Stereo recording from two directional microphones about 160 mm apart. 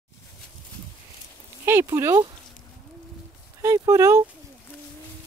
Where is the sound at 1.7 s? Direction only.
15° right (ahead or behind).